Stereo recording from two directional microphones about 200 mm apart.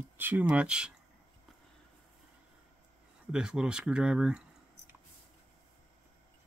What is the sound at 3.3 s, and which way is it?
Speech, 5° right (ahead or behind).